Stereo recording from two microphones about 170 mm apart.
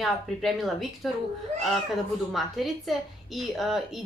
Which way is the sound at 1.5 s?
45° right (ahead or behind).